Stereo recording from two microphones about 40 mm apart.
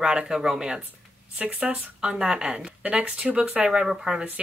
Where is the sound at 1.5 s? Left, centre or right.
Right.